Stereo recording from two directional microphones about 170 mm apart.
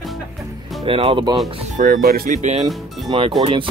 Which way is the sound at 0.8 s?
35° right (ahead or behind).